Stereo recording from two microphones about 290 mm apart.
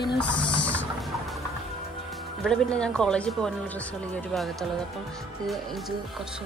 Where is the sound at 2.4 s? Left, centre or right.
Centre.